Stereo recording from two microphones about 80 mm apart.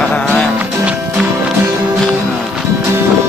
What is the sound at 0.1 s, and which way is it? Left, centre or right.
Music, centre.